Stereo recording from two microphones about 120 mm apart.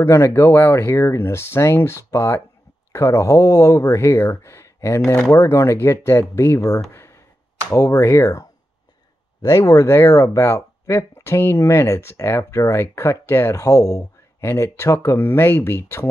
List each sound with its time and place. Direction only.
0.0 s speech: 25° left (ahead or behind)
6.9 s a sound: 20° left (ahead or behind)
7.7 s speech: 25° left (ahead or behind)